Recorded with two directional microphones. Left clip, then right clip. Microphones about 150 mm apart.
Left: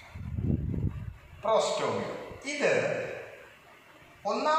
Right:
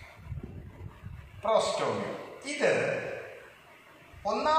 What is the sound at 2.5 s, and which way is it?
Speech, 20° right (ahead or behind).